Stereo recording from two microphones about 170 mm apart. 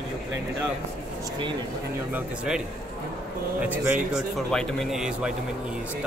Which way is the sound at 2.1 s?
5° right (ahead or behind).